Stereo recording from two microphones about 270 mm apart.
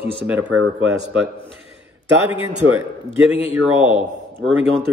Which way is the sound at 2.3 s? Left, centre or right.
Centre.